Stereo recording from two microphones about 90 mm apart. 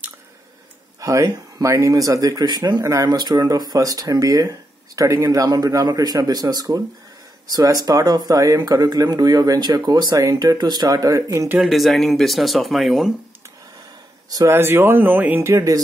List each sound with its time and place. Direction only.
1.0 s speech: 35° right (ahead or behind); by 10.1 s 50° right (ahead or behind)
10.1 s speech: 40° right (ahead or behind)
11.6 s speech: centre (ahead or behind)
14.5 s speech: 25° right (ahead or behind)
15.5 s speech: 40° right (ahead or behind)